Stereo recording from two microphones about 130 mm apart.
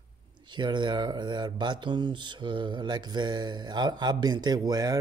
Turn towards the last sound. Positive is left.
turn(degrees=-30)  # may be behind; listen again after turning